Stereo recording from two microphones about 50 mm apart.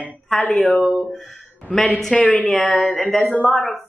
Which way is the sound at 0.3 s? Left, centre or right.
Centre.